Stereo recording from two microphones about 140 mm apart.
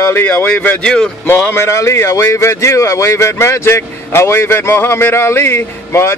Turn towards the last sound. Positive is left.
turn(degrees=20)  # may be behind; listen again after turning